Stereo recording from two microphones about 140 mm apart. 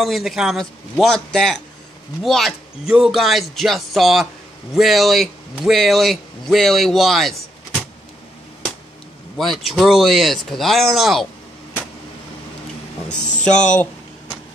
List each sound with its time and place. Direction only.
0.0 s speech: centre (ahead or behind)
9.4 s speech: centre (ahead or behind)
13.1 s speech: 60° left (ahead or behind)